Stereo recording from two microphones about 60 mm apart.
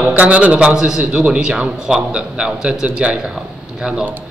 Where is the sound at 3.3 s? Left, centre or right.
Centre.